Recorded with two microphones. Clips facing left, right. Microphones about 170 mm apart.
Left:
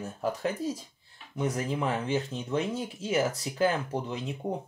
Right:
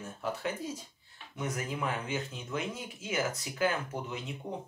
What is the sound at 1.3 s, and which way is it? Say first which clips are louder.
Speech: left 6 dB; 30° left (ahead or behind).